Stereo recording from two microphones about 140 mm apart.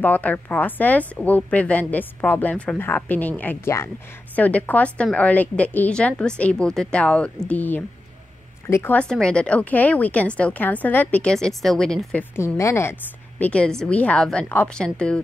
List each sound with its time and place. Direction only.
0.0 s speech: 10° left (ahead or behind)
9.1 s speech: 5° left (ahead or behind)
13.4 s speech: 10° left (ahead or behind)